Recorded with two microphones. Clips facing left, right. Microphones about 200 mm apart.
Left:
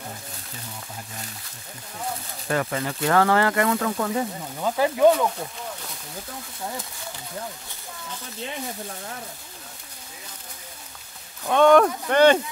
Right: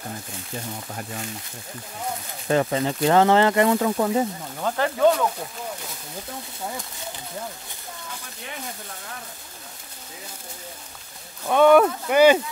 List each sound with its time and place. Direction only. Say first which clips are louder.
2.4 s speech: right 4 dB; 25° right (ahead or behind)
4.6 s speech: left 2 dB; 5° left (ahead or behind)
11.4 s speech: right 1 dB; 5° right (ahead or behind)